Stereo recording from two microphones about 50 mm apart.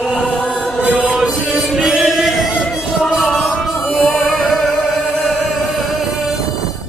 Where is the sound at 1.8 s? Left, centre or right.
Centre.